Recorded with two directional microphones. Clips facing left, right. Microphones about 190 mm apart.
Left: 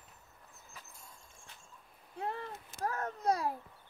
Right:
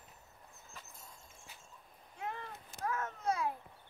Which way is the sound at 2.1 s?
35° left (ahead or behind).